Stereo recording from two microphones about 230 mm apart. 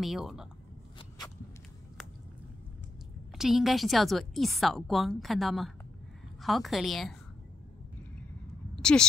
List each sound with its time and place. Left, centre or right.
0.0 s a woman's voice: centre
0.9 s a sound: centre
3.3 s a woman's voice: centre